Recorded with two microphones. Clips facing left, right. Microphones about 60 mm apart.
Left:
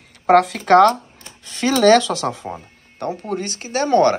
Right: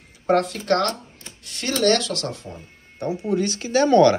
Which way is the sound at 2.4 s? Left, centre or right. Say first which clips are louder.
Left 7 dB; left.